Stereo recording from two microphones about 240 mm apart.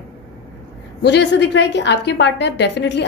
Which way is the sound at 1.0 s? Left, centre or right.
Left.